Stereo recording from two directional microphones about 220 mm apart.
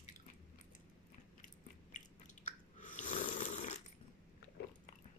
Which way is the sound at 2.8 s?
35° left (ahead or behind).